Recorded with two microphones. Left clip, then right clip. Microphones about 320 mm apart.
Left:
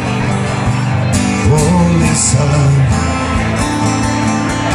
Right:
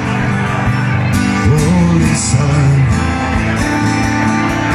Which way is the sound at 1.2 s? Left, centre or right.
Left.